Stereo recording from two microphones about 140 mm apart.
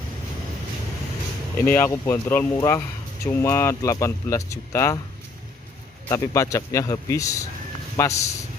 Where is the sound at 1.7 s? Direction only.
15° left (ahead or behind).